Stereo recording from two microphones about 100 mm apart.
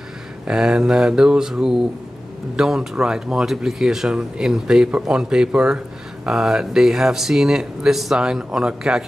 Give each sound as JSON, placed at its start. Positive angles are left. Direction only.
{"t": 0.5, "sound": "speech", "side_deg": -5}